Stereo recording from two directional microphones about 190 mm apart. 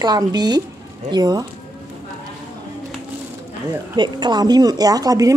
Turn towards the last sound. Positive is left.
turn(degrees=-20)  # may be behind; listen again after turning